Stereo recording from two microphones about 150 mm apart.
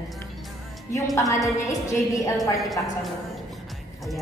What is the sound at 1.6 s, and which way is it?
Speech, 20° left (ahead or behind).